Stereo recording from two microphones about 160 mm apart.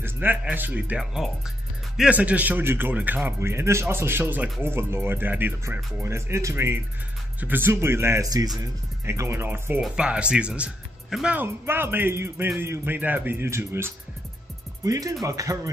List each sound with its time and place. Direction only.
0.0 s a man's voice: 10° right (ahead or behind)